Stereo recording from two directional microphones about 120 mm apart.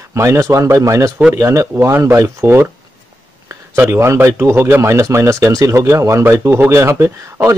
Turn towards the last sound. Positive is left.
turn(degrees=-25)  # may be behind; listen again after turning